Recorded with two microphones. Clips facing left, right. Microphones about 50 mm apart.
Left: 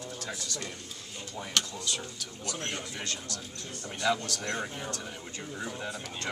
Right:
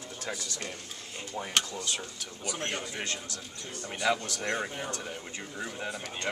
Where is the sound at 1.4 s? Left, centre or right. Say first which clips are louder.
Right 1 dB; right.